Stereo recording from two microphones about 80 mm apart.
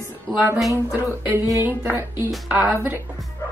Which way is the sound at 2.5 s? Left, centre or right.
Right.